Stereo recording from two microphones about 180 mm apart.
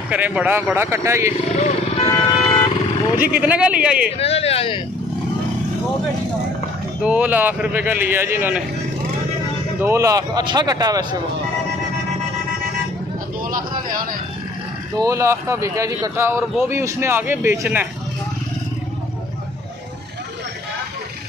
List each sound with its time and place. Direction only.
0.1 s a man's voice: 5° right (ahead or behind)
1.6 s vehicle: 35° left (ahead or behind)
3.3 s a man's voice: 10° right (ahead or behind)
4.2 s a woman's voice: 35° left (ahead or behind)
7.0 s a man's voice: 5° right (ahead or behind)
9.8 s speech: 15° right (ahead or behind)
15.0 s a man's voice: 15° right (ahead or behind)